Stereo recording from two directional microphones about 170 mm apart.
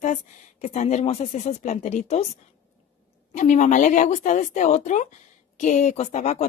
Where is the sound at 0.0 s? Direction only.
45° left (ahead or behind).